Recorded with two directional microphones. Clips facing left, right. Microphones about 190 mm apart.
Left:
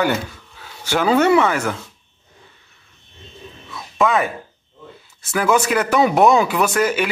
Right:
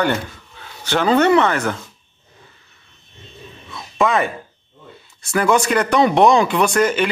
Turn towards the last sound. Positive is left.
turn(degrees=5)  # may be behind; listen again after turning